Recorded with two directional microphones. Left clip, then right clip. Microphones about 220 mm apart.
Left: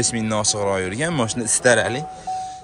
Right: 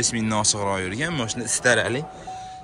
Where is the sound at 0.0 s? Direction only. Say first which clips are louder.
Left 1 dB; 25° left (ahead or behind).